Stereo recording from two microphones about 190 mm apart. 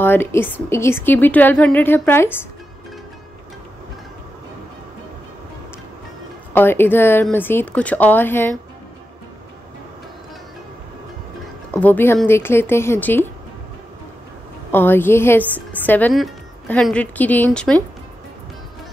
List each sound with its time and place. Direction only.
0.0 s a woman's voice: 10° left (ahead or behind)
6.5 s a woman's voice: 10° left (ahead or behind)
11.7 s a woman's voice: 10° left (ahead or behind)
14.7 s a woman's voice: 10° left (ahead or behind)